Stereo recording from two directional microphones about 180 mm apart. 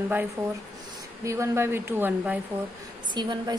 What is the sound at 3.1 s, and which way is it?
Speech, 25° right (ahead or behind).